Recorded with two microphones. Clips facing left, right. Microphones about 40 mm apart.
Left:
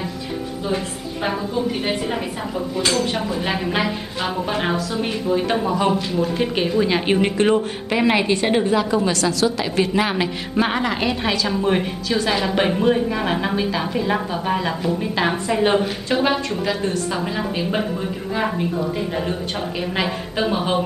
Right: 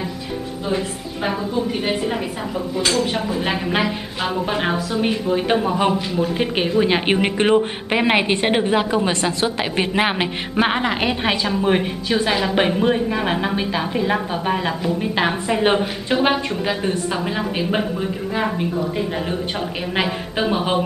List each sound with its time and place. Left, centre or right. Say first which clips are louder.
1.2 s a woman's voice: right 1 dB; centre
20.0 s a woman's voice: right 2 dB; centre